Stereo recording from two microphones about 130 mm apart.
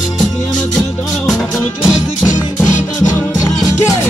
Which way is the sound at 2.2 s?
70° left (ahead or behind).